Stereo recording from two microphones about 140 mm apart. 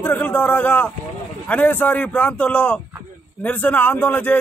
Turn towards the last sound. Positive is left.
turn(degrees=10)  # may be behind; listen again after turning